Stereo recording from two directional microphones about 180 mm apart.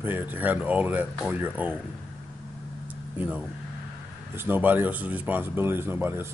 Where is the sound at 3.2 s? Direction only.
10° right (ahead or behind).